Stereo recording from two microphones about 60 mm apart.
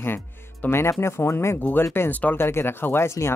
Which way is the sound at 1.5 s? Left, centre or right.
Left.